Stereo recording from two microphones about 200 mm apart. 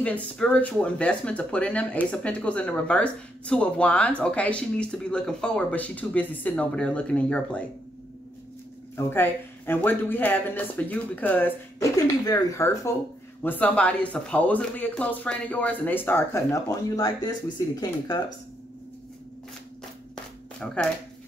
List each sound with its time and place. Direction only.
0.0 s speech: 5° left (ahead or behind)
8.9 s speech: 10° left (ahead or behind)
20.6 s speech: 5° left (ahead or behind)